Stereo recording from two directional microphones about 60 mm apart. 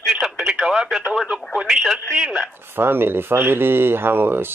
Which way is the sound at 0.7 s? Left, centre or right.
Centre.